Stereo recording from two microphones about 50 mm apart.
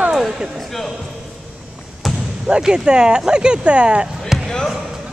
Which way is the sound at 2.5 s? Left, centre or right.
Centre.